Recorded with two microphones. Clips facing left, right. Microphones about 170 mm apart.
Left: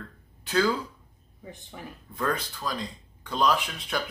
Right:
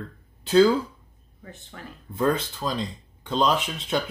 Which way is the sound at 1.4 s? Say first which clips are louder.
Even; 15° left (ahead or behind).